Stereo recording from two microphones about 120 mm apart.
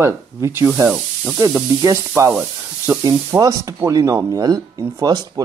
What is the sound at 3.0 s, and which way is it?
Speech, 30° right (ahead or behind).